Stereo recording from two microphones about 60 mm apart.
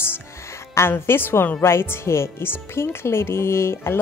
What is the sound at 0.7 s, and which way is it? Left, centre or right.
Speech, left.